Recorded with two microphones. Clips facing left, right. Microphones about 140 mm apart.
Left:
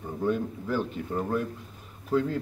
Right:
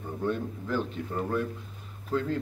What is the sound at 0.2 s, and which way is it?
A man's voice, 10° left (ahead or behind).